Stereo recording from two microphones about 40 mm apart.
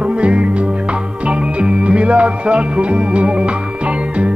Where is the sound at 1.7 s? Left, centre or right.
Right.